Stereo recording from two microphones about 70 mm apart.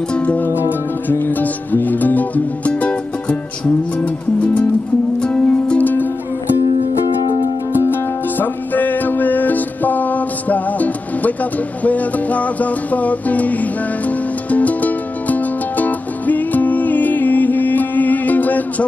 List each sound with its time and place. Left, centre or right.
0.1 s music: centre
0.7 s music: left
5.2 s music: centre
7.8 s music: left